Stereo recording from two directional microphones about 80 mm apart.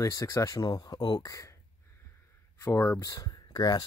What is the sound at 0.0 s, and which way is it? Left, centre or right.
Speech, left.